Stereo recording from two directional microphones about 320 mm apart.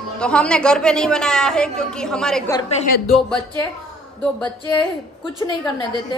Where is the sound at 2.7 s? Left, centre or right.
Left.